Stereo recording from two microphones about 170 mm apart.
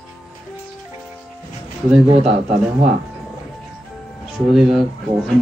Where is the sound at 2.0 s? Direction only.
35° right (ahead or behind).